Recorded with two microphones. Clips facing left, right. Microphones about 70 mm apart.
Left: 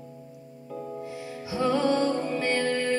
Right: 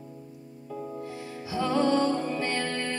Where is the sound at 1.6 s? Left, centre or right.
Left.